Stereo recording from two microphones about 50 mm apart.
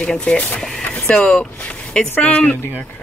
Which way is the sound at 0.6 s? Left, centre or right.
Centre.